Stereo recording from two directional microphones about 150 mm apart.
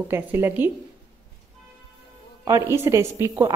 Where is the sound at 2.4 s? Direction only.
20° right (ahead or behind).